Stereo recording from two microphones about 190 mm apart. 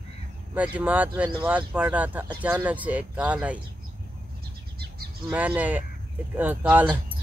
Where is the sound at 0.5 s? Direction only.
5° right (ahead or behind).